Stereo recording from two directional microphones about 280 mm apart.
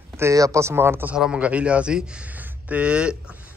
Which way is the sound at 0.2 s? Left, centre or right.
Centre.